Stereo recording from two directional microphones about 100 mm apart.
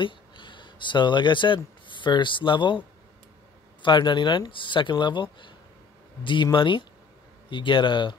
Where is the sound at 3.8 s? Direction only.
50° left (ahead or behind).